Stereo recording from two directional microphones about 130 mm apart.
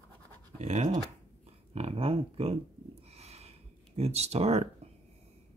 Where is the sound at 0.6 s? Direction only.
60° right (ahead or behind).